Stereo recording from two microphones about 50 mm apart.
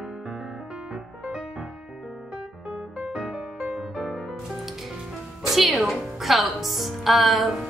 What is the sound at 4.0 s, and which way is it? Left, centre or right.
Music, centre.